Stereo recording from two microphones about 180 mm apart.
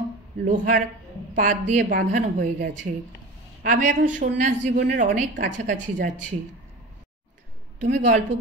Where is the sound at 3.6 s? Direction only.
45° right (ahead or behind).